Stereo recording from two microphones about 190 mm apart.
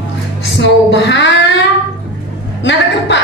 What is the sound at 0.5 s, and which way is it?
A woman's voice, 70° left (ahead or behind).